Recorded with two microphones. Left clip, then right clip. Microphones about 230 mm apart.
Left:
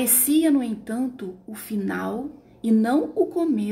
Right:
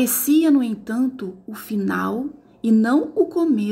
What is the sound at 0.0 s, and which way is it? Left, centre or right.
Speech, centre.